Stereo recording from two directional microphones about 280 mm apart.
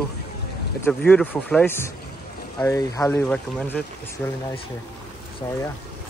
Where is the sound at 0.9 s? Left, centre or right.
Centre.